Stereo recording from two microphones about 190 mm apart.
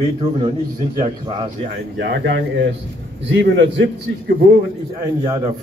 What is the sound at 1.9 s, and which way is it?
A man's voice, 60° right (ahead or behind).